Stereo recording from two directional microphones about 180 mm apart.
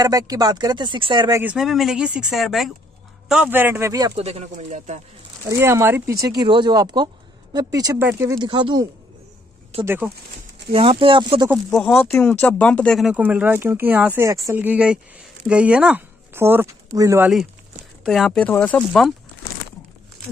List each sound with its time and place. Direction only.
0.0 s speech: 20° right (ahead or behind)
1.4 s speech: 5° right (ahead or behind)
4.2 s speech: 35° right (ahead or behind)
5.5 s speech: 15° right (ahead or behind)
8.4 s speech: 25° right (ahead or behind)
11.4 s speech: 5° right (ahead or behind)
18.0 s speech: centre (ahead or behind)